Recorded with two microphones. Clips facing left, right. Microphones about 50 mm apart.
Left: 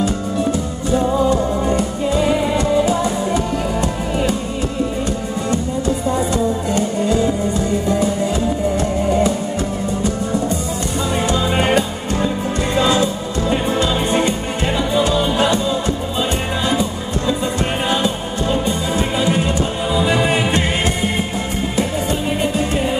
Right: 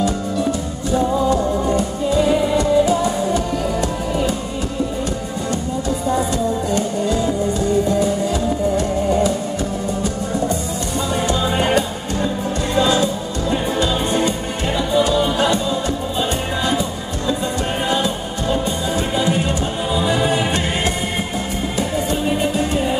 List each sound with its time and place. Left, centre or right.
0.9 s music: left
11.2 s music: left
13.5 s music: left